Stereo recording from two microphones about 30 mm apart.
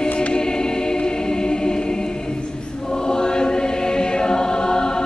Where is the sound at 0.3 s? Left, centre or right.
Left.